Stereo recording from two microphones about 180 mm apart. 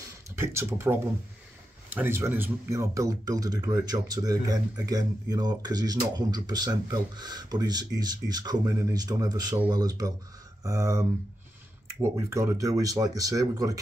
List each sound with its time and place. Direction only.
0.4 s speech: 15° right (ahead or behind)